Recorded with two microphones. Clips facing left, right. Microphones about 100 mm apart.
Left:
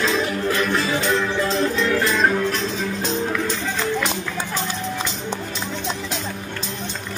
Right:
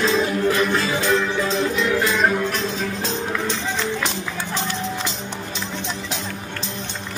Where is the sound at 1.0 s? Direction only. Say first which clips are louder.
Right 1 dB; centre (ahead or behind).